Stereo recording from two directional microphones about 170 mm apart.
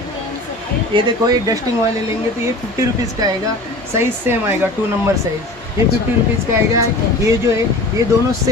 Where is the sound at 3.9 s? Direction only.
15° right (ahead or behind).